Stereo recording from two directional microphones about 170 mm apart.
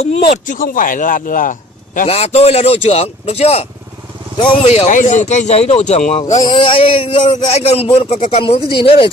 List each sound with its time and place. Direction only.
0.5 s speech: 55° left (ahead or behind)
2.0 s a man's voice: 40° left (ahead or behind)
6.4 s a man's voice: 30° left (ahead or behind)